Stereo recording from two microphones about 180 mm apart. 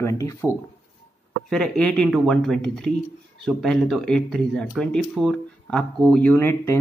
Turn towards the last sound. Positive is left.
turn(degrees=15)  # may be behind; listen again after turning